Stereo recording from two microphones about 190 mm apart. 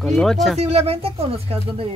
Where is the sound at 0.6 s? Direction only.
35° right (ahead or behind).